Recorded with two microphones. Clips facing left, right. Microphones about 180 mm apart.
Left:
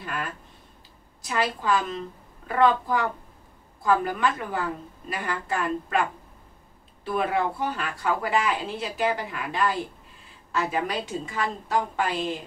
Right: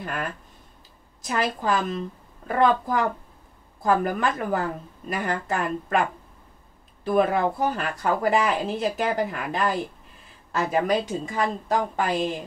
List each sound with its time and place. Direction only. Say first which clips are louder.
1.2 s speech: right 1 dB; 45° right (ahead or behind)
7.1 s speech: right 4 dB; 45° right (ahead or behind)